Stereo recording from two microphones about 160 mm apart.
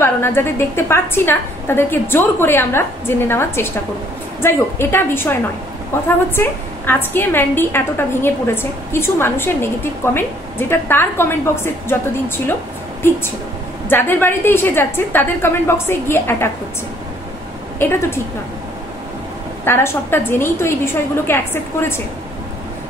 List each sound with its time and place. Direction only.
0.0 s a woman's voice: 15° left (ahead or behind)
13.8 s a woman's voice: 15° left (ahead or behind)
17.7 s a woman's voice: 15° left (ahead or behind)
19.6 s a woman's voice: 15° left (ahead or behind)